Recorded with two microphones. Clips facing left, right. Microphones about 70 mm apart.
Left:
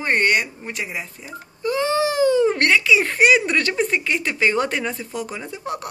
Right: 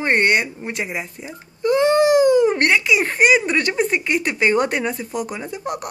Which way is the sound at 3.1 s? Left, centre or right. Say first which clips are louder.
Even; centre.